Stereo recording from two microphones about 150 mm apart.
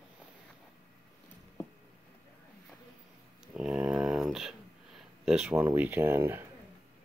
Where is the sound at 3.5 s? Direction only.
5° right (ahead or behind).